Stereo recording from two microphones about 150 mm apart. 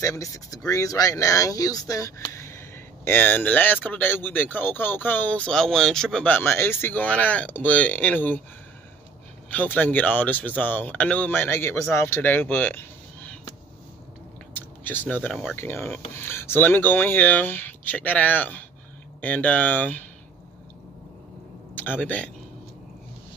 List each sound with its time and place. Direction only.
0.0 s speech: 20° left (ahead or behind)
9.5 s speech: 10° left (ahead or behind)
14.5 s a sound: 15° left (ahead or behind)
15.5 s speech: 15° left (ahead or behind)
21.7 s speech: 10° left (ahead or behind)